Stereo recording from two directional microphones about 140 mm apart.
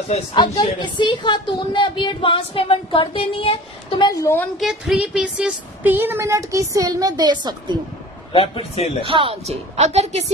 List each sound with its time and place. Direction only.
0.3 s speech: 30° left (ahead or behind)
4.0 s a woman's voice: 25° left (ahead or behind)
4.6 s speech: centre (ahead or behind); by 7.7 s 30° right (ahead or behind)
8.3 s speech: 40° left (ahead or behind)
9.0 s a woman's voice: 40° right (ahead or behind)